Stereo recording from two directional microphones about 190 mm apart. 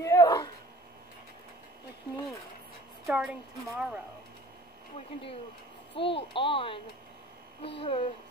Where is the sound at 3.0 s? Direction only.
5° right (ahead or behind).